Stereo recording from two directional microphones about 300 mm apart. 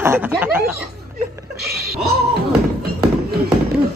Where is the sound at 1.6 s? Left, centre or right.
Right.